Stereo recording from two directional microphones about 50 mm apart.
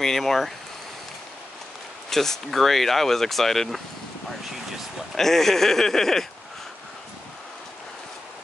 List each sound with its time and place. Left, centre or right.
0.0 s speech: centre
2.0 s speech: centre
5.1 s speech: centre